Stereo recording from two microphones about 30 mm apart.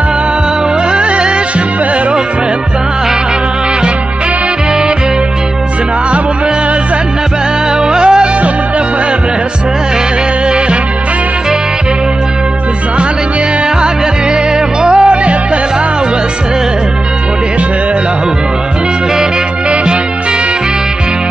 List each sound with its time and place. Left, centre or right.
0.9 s music: right
7.8 s music: right
14.8 s music: right